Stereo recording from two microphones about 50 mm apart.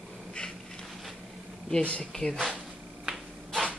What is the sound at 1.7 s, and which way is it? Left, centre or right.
Speech, centre.